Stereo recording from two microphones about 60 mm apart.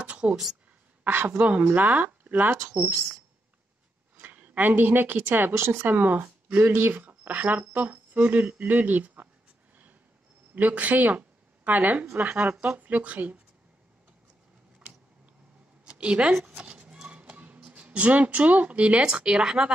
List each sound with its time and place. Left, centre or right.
0.0 s a sound: centre
1.0 s speech: right
4.2 s a woman's voice: right
5.5 s speech: right
10.5 s speech: right
15.8 s a sound: centre
16.9 s speech: centre